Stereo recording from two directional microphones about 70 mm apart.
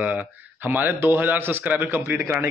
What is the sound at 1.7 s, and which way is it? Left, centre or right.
Speech, right.